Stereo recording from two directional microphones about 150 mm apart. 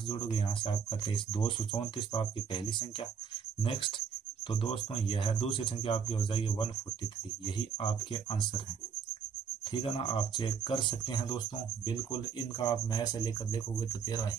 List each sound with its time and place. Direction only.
0.1 s speech: 35° left (ahead or behind)
4.5 s speech: 35° left (ahead or behind)
9.7 s speech: 35° left (ahead or behind)